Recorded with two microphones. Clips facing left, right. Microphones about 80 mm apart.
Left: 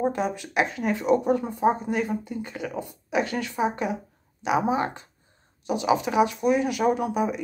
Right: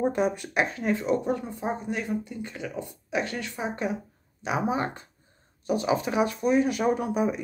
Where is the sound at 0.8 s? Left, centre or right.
Centre.